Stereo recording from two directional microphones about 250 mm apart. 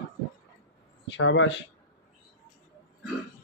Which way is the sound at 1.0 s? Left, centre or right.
Left.